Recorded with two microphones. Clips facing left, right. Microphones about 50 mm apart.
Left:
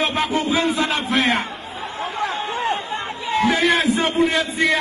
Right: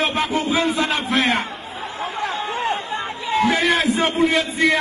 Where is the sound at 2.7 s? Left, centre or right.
Right.